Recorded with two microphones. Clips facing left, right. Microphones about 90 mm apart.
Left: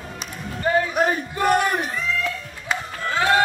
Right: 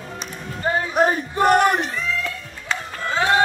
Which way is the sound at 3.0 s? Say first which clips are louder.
Even; 25° right (ahead or behind).